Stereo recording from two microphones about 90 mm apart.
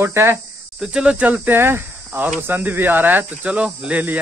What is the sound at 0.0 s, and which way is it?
Speech, 30° right (ahead or behind).